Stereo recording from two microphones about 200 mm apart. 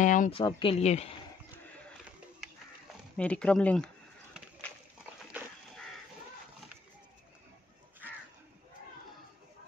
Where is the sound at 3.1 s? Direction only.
5° left (ahead or behind).